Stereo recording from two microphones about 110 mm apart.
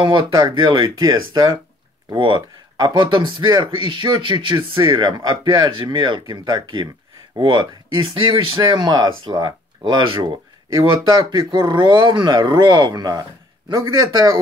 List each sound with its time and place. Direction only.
0.0 s speech: 45° right (ahead or behind)
8.7 s speech: 35° right (ahead or behind)